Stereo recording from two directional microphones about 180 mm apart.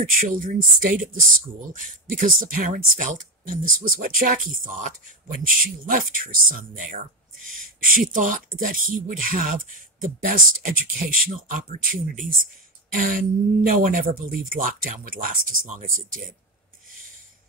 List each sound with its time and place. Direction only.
0.0 s speech: 50° right (ahead or behind)